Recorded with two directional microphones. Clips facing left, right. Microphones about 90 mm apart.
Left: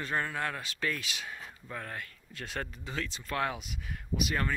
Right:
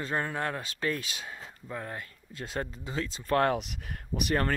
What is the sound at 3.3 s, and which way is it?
Speech, 50° right (ahead or behind).